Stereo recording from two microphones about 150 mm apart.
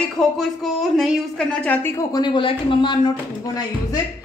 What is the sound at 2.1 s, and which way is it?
Speech, 30° left (ahead or behind).